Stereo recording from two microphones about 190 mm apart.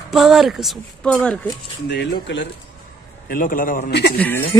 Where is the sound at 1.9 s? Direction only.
65° left (ahead or behind).